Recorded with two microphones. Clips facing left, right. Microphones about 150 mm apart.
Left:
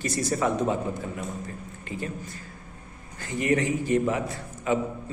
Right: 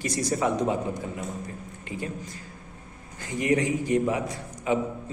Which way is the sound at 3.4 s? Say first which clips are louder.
Even; 15° right (ahead or behind).